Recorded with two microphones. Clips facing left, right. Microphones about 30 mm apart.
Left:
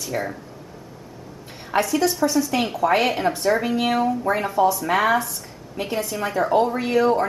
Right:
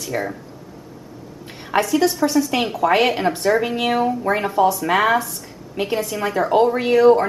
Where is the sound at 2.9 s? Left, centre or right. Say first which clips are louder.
Right 3 dB; centre.